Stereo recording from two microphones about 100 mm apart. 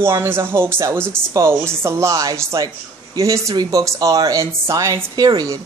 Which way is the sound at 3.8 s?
35° right (ahead or behind).